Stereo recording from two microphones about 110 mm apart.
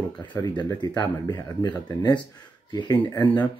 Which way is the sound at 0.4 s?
40° left (ahead or behind).